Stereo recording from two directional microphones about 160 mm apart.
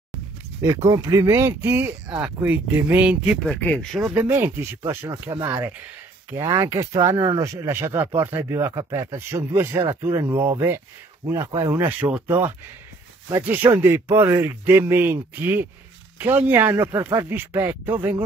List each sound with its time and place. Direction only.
0.9 s speech: 20° right (ahead or behind)
3.4 s speech: 10° left (ahead or behind)
4.0 s speech: 10° right (ahead or behind)
11.2 s speech: 15° right (ahead or behind)